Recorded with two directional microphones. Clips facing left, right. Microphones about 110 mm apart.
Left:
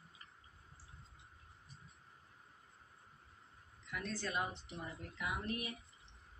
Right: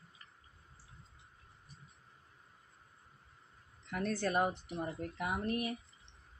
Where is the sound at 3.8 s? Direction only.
55° right (ahead or behind).